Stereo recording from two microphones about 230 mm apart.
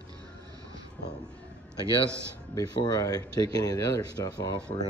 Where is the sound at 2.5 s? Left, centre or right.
Centre.